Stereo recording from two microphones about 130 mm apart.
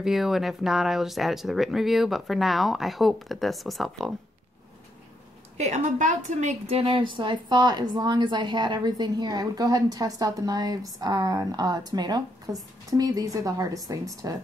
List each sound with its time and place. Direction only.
0.0 s speech: centre (ahead or behind)
5.6 s a woman's voice: 65° right (ahead or behind); by 14.3 s 25° right (ahead or behind)